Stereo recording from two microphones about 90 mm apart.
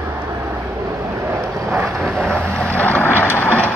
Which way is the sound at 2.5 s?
15° left (ahead or behind).